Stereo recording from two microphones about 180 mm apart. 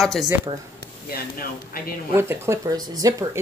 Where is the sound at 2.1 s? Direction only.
15° right (ahead or behind).